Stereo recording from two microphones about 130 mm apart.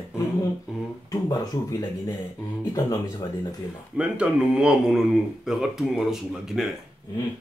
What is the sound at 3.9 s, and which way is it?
Speech, 10° right (ahead or behind).